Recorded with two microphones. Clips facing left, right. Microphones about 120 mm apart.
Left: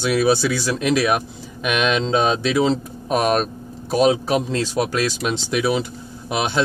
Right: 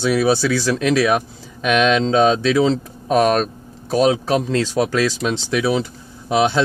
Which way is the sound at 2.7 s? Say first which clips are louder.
Right 3 dB; 15° left (ahead or behind).